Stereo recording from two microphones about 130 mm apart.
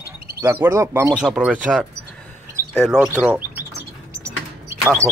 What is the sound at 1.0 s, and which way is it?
Speech, 5° right (ahead or behind).